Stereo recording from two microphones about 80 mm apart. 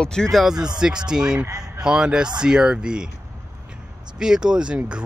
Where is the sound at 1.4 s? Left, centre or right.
Right.